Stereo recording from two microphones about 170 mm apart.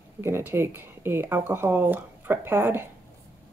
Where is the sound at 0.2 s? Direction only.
15° right (ahead or behind).